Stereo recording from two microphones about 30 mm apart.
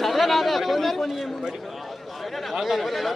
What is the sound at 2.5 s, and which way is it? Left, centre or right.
Chatter, centre.